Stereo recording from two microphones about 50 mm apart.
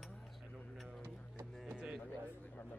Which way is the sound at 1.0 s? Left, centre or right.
Right.